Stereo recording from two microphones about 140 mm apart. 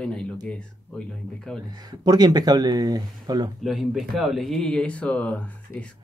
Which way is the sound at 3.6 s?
Centre (ahead or behind).